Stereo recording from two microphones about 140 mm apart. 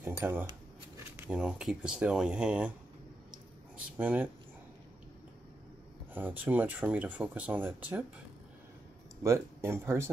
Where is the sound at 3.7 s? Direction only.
10° right (ahead or behind).